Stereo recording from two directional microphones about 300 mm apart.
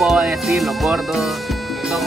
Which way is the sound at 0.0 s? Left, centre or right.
Centre.